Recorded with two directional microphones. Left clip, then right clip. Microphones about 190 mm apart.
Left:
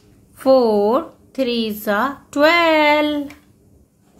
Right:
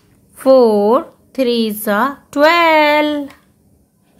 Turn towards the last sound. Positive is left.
turn(degrees=-30)  # may be behind; listen again after turning